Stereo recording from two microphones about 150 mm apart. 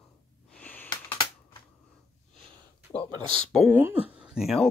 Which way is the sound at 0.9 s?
35° left (ahead or behind).